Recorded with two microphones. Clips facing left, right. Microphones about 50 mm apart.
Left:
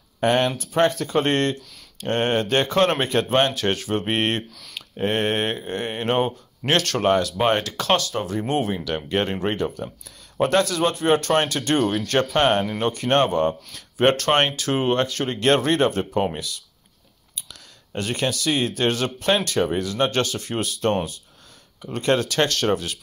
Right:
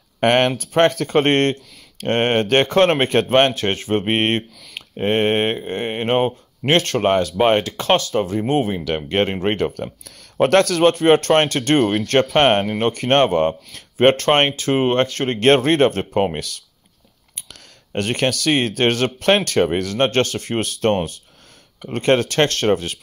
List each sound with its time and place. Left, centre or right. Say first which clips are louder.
0.2 s speech: right 4 dB; right
8.8 s speech: right 4 dB; right
9.6 s speech: right 4 dB; right
16.3 s speech: right 3 dB; right